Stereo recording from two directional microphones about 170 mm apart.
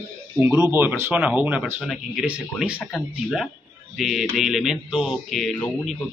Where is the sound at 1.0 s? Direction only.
10° right (ahead or behind).